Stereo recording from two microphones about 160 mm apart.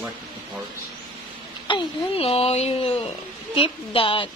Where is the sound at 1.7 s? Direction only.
40° left (ahead or behind).